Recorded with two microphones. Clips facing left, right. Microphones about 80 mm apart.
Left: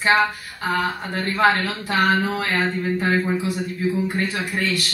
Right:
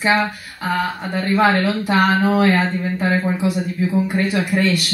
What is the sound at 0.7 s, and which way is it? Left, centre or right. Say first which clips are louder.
Speech: right 2 dB; right.